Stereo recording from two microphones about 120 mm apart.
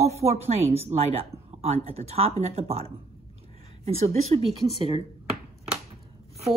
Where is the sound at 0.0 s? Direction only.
60° right (ahead or behind).